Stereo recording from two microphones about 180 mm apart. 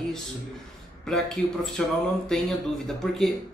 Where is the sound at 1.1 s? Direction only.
Centre (ahead or behind).